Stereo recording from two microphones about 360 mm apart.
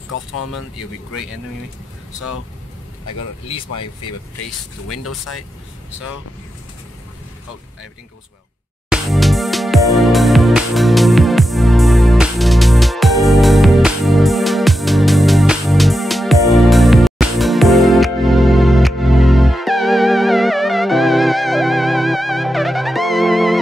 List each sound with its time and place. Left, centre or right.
0.1 s speech: left
4.8 s speech: left
8.9 s music: centre